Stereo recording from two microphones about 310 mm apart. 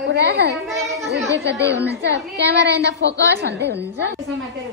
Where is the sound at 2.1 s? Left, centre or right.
Right.